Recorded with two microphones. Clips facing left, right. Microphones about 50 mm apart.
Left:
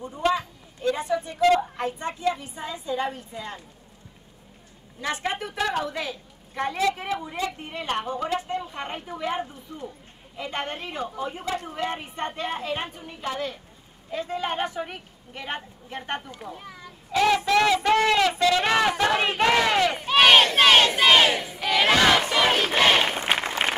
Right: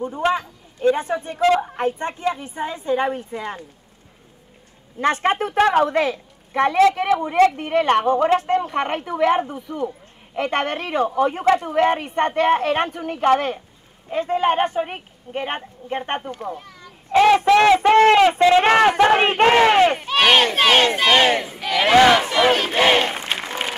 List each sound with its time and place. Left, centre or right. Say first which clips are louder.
0.0 s speech: right 4 dB; right
5.0 s speech: right 9 dB; right
16.5 s children playing: right 2 dB; centre
17.1 s speech: right 7 dB; right
20.1 s crowd: right 1 dB; centre
20.5 s battle cry: right 1 dB; centre
21.3 s speech: right 6 dB; right
21.5 s battle cry: right 2 dB; centre
21.9 s battle cry: right 9 dB; centre